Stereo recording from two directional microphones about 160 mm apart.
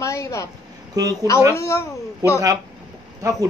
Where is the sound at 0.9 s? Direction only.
25° right (ahead or behind).